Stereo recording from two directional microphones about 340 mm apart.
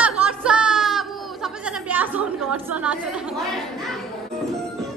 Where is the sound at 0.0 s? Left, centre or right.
Centre.